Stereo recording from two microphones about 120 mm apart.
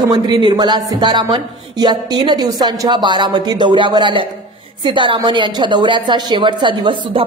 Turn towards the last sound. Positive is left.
turn(degrees=-45)  # may be behind; listen again after turning